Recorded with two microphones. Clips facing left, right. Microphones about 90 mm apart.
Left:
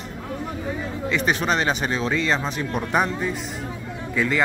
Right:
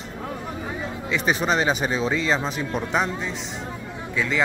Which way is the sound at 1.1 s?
Centre (ahead or behind).